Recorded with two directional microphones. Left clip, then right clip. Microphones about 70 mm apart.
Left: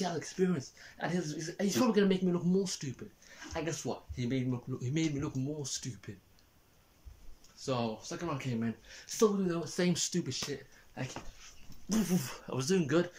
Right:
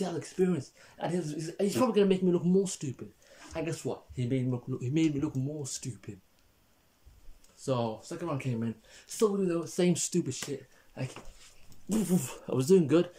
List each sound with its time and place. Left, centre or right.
0.0 s speech: right
0.4 s speech: centre
2.3 s speech: right
3.5 s speech: right
7.6 s speech: right
9.7 s speech: right
11.0 s speech: centre
11.9 s speech: right
12.5 s speech: right
12.8 s speech: right